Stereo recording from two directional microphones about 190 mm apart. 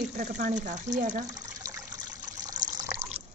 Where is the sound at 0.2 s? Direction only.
40° right (ahead or behind).